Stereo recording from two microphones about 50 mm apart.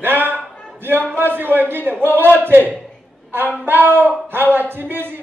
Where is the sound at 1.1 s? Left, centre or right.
Right.